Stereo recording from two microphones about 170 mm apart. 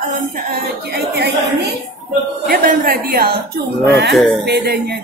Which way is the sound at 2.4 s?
60° right (ahead or behind).